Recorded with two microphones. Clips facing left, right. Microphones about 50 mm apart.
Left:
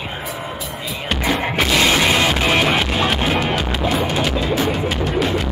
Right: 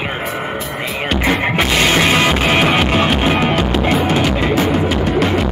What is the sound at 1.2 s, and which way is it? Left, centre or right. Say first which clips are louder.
Music: right 2 dB; right.